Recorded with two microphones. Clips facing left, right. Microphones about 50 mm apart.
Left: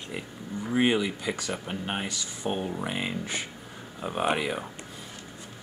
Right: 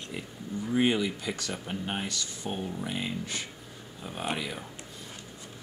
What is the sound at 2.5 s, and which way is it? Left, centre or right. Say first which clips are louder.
Speech: left 4 dB; left.